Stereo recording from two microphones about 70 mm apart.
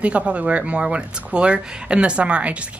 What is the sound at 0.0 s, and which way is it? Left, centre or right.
Speech, centre.